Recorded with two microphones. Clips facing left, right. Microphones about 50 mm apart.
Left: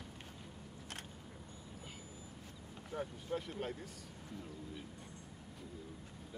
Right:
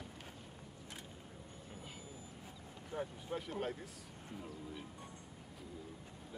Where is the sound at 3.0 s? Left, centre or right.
Centre.